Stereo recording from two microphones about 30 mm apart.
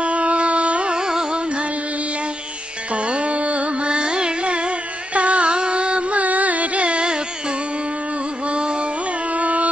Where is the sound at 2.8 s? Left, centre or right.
Right.